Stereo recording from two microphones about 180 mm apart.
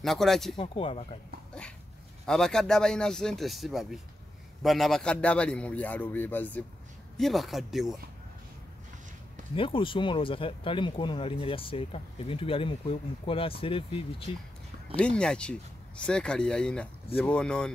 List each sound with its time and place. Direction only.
0.0 s speech: centre (ahead or behind)
0.6 s speech: 30° left (ahead or behind)
2.2 s a man's voice: 5° left (ahead or behind)
9.6 s speech: 30° left (ahead or behind)
15.0 s speech: 5° left (ahead or behind)